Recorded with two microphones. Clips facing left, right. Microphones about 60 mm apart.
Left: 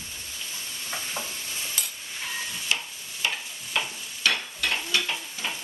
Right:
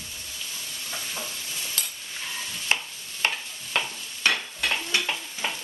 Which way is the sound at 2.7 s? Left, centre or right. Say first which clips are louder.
Right 4 dB; right.